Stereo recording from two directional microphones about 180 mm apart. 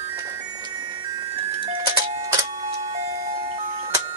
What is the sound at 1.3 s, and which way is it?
Music, 25° right (ahead or behind).